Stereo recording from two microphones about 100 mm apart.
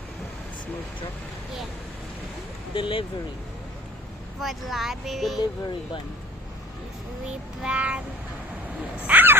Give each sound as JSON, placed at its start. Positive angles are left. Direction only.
{"t": 2.7, "sound": "speech", "side_deg": 60}
{"t": 4.4, "sound": "speech", "side_deg": 0}
{"t": 7.6, "sound": "speech", "side_deg": -10}
{"t": 9.0, "sound": "speech", "side_deg": -20}